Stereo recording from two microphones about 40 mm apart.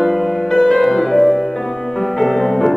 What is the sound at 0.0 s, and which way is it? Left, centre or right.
Music, centre.